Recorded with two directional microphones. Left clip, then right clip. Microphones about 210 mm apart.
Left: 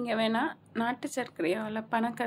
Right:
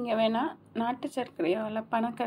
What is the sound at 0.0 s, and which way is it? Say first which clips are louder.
A woman's voice: right 2 dB; 10° left (ahead or behind).